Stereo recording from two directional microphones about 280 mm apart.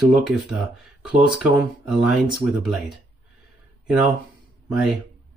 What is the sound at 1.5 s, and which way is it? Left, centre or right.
Speech, centre.